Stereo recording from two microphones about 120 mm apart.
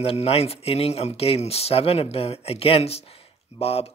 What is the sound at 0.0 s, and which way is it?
Speech, 55° left (ahead or behind).